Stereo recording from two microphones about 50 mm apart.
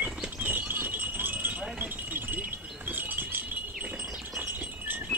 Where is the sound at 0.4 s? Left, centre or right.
Right.